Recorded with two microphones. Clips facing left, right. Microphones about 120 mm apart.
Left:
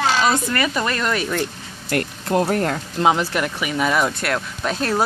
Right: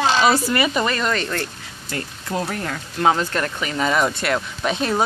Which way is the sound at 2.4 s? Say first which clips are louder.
Left 7 dB; 45° left (ahead or behind).